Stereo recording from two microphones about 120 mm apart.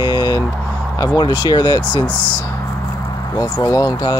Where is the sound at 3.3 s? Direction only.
30° left (ahead or behind).